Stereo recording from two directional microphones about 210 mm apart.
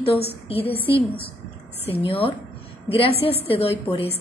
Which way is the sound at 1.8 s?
25° left (ahead or behind).